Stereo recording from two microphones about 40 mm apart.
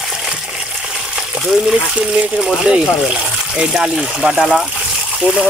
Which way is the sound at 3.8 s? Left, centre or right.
Centre.